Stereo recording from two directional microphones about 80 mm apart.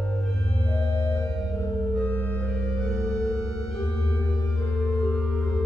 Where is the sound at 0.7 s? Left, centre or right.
Left.